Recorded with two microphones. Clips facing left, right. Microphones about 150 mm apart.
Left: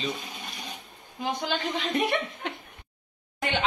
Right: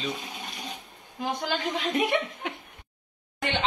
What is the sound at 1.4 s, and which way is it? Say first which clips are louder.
A man's voice: right 1 dB; 5° right (ahead or behind).